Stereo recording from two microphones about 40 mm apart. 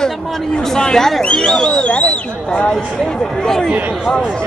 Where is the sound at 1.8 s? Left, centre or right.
Left.